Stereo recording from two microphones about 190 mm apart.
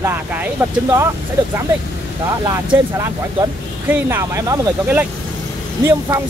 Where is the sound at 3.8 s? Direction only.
10° right (ahead or behind).